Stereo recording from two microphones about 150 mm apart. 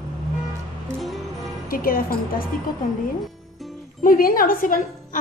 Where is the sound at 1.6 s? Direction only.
75° left (ahead or behind).